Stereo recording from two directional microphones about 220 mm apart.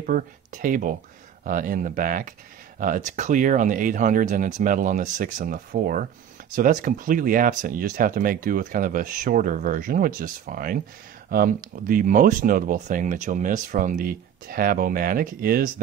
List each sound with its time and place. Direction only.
0.0 s speech: 35° right (ahead or behind)